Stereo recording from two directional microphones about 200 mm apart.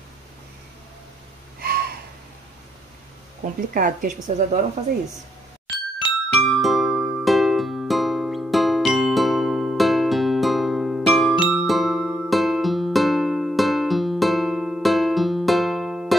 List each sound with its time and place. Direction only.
1.6 s a sound: 50° right (ahead or behind)
3.7 s a woman's voice: 40° right (ahead or behind)
5.9 s music: centre (ahead or behind)